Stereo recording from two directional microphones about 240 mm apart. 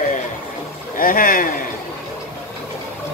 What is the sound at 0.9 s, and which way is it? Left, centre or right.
Speech, left.